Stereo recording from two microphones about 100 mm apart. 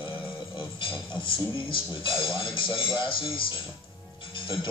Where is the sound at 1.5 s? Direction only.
60° left (ahead or behind).